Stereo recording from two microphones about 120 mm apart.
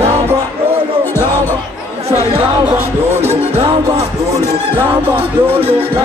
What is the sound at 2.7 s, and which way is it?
Music, 55° right (ahead or behind).